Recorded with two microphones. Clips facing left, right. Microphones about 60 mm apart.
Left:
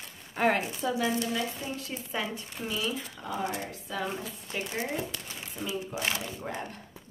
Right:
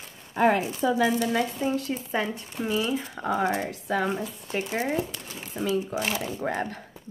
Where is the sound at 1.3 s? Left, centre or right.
Right.